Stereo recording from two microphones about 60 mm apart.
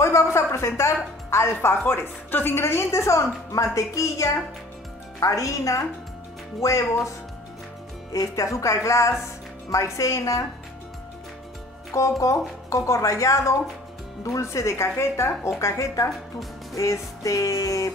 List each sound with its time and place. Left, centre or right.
0.0 s a woman's voice: left
8.1 s speech: left
11.9 s speech: left
16.7 s music: left